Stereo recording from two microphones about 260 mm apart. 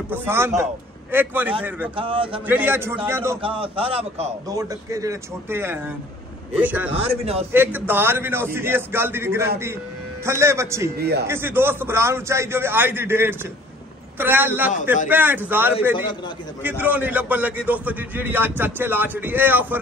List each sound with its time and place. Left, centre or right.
0.1 s a man's voice: centre
2.0 s a man's voice: centre
2.4 s a man's voice: centre
6.9 s a man's voice: right
7.5 s a man's voice: centre
11.0 s a man's voice: right
11.2 s a man's voice: centre